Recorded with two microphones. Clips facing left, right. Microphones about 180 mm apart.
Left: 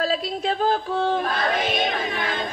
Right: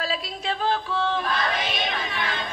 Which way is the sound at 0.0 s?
45° left (ahead or behind).